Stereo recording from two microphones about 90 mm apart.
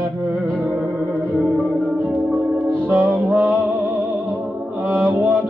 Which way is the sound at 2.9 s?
30° right (ahead or behind).